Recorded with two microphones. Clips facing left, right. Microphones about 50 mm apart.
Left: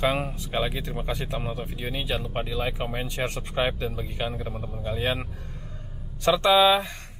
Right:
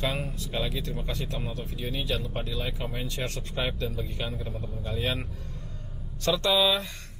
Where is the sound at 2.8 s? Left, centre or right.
Left.